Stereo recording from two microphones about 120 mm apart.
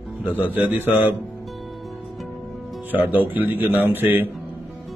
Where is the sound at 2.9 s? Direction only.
15° right (ahead or behind).